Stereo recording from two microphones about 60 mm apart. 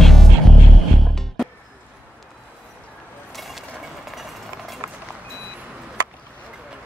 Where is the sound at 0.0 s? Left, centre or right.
Centre.